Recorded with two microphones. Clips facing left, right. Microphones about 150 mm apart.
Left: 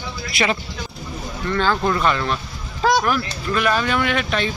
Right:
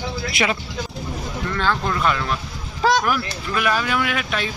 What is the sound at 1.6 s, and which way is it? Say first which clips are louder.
Speech: left 3 dB; 5° left (ahead or behind).